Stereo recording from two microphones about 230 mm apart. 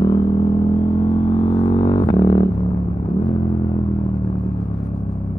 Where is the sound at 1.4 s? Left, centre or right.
Centre.